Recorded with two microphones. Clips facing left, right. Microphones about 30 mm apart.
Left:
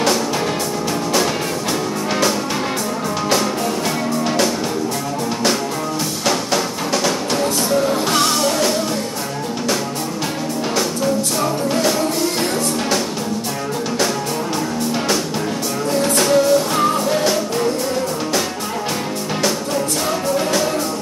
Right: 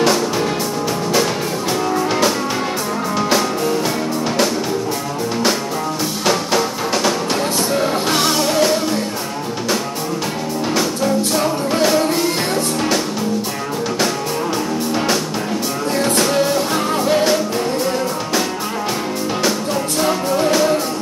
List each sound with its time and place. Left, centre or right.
3.2 s music: centre
6.2 s music: centre
11.3 s music: centre
16.0 s music: centre
20.3 s music: centre